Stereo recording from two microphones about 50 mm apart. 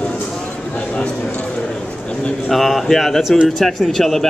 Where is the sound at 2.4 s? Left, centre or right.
Centre.